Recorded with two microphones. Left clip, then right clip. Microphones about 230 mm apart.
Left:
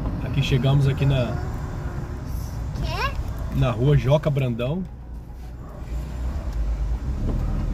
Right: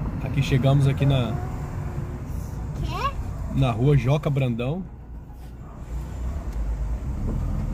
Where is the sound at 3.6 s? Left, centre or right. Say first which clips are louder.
Even; centre.